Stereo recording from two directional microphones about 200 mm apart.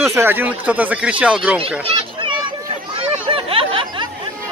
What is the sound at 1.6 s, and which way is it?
Children playing, 30° right (ahead or behind).